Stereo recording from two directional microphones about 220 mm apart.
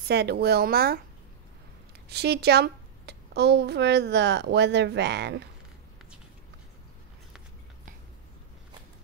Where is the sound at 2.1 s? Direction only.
45° right (ahead or behind).